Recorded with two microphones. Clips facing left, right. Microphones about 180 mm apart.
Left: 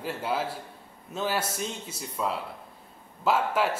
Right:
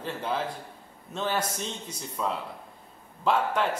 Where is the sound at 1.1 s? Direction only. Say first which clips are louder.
Even; 5° left (ahead or behind).